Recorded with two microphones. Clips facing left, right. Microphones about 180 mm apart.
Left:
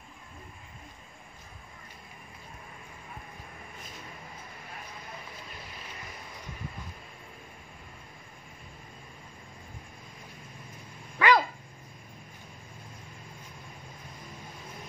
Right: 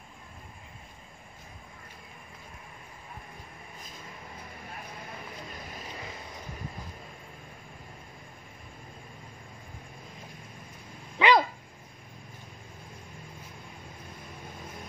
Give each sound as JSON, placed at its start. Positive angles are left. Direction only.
{"t": 11.2, "sound": "dog", "side_deg": -20}